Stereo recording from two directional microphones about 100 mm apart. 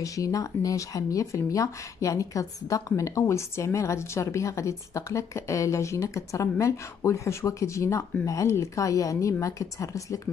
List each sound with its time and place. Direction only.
0.0 s speech: 35° left (ahead or behind)